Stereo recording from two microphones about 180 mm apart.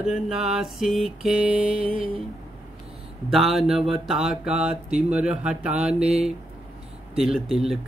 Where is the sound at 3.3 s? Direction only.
Centre (ahead or behind).